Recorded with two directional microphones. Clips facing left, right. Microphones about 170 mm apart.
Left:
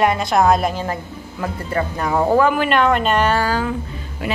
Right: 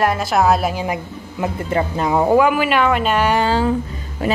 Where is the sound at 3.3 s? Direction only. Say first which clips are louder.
Right 3 dB; 25° right (ahead or behind).